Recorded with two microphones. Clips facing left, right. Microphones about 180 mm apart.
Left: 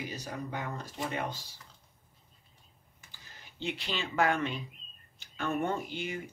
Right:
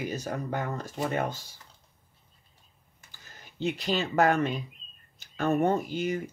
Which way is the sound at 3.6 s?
40° right (ahead or behind).